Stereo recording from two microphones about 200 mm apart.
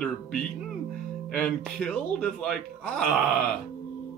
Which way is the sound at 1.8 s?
5° left (ahead or behind).